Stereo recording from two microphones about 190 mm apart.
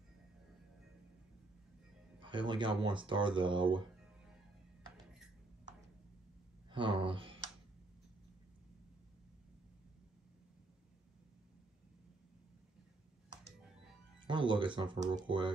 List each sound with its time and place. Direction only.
2.1 s speech: 25° right (ahead or behind)
6.7 s speech: 25° right (ahead or behind)
14.2 s speech: 25° right (ahead or behind)